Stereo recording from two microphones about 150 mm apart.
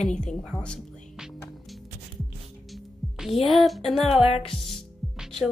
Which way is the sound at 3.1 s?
Centre (ahead or behind).